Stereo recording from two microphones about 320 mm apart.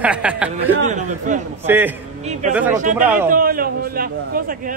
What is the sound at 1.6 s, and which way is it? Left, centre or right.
Speech, centre.